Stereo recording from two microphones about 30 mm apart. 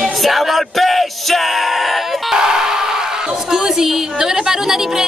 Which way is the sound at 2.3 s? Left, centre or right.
Centre.